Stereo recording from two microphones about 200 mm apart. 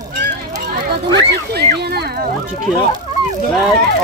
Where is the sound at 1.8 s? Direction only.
55° right (ahead or behind).